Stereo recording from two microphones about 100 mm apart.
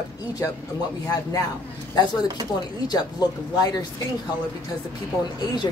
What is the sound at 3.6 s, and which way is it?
Speech, 35° left (ahead or behind).